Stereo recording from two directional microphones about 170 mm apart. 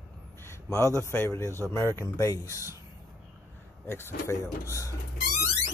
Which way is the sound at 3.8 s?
15° left (ahead or behind).